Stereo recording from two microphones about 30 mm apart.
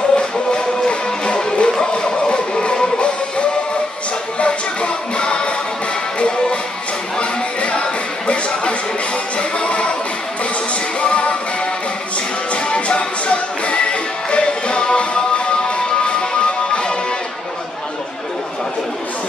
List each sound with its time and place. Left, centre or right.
0.1 s music: left
11.0 s music: left
12.6 s music: left